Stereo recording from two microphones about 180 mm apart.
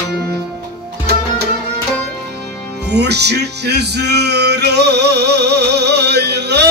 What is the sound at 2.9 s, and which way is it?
Music, 70° right (ahead or behind).